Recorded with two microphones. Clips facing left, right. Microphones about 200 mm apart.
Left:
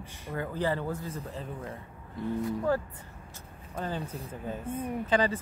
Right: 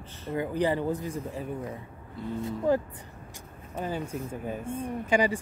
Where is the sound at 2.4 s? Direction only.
20° right (ahead or behind).